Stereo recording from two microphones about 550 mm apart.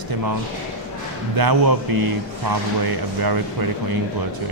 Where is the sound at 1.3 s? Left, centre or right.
Right.